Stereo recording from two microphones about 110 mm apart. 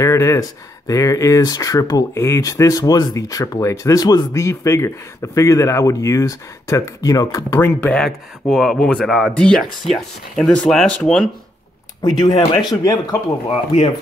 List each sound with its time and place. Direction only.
0.0 s speech: 30° left (ahead or behind)
7.8 s speech: 5° left (ahead or behind)
12.0 s speech: 35° left (ahead or behind)